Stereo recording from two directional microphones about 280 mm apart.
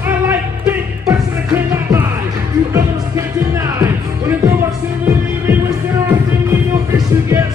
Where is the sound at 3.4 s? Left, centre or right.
Centre.